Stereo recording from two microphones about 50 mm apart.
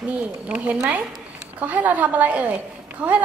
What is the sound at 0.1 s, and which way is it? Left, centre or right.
A woman's voice, right.